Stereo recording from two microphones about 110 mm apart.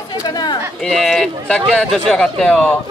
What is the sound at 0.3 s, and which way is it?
Speech, 40° left (ahead or behind).